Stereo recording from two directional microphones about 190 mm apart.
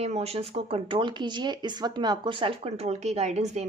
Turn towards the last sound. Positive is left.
turn(degrees=-35)  # may be behind; listen again after turning